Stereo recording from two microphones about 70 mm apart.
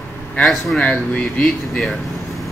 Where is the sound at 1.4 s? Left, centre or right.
Centre.